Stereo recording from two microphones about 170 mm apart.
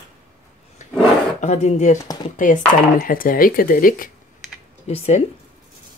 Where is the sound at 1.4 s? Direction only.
45° left (ahead or behind).